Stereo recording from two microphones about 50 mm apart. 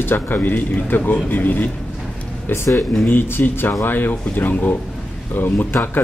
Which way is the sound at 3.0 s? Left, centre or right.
Left.